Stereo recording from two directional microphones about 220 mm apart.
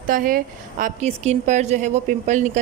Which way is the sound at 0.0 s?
40° right (ahead or behind).